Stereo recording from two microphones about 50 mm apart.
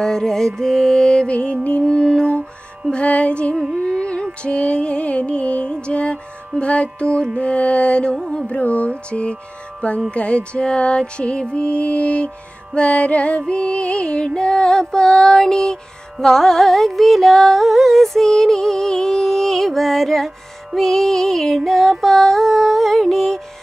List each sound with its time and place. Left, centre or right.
0.0 s female singing: centre
2.9 s music: left
8.5 s music: left
13.4 s female singing: centre